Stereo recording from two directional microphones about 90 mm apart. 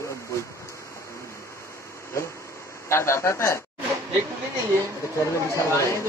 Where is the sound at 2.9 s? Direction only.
30° left (ahead or behind).